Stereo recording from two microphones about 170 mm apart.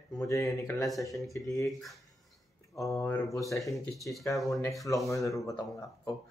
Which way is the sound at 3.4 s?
Centre (ahead or behind).